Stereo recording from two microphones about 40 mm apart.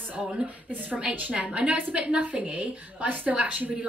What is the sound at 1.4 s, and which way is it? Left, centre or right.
A woman's voice, right.